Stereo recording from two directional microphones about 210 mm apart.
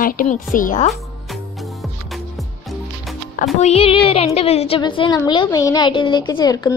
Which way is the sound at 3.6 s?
30° left (ahead or behind).